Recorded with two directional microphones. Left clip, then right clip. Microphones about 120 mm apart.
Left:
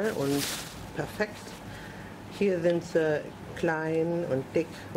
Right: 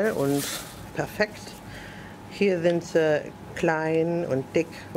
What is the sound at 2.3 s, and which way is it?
Speech, 40° right (ahead or behind).